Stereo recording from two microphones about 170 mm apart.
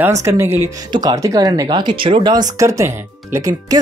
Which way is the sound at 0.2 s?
15° right (ahead or behind).